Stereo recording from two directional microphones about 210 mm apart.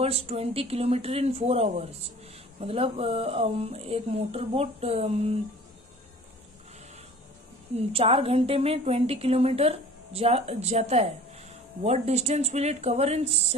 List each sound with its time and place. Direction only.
0.0 s a woman's voice: 30° right (ahead or behind)
7.7 s a woman's voice: 25° right (ahead or behind)